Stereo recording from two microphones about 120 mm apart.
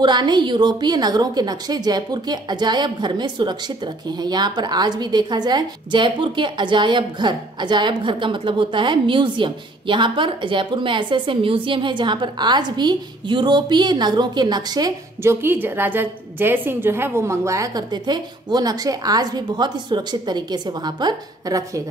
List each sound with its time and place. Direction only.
0.0 s a woman's voice: 40° right (ahead or behind)
15.2 s a woman's voice: 20° right (ahead or behind)